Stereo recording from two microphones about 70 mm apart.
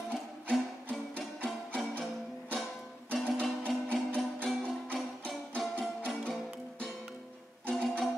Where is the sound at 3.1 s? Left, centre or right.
Centre.